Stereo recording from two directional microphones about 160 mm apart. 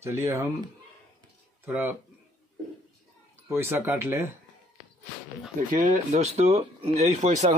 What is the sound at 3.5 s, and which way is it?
Speech, 15° right (ahead or behind).